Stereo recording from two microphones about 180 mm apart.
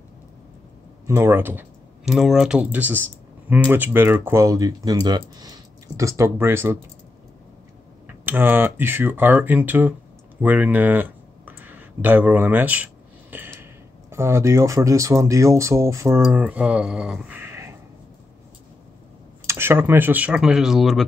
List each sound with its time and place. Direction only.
1.0 s speech: 15° right (ahead or behind)
8.3 s speech: 10° right (ahead or behind)
19.4 s speech: 15° right (ahead or behind)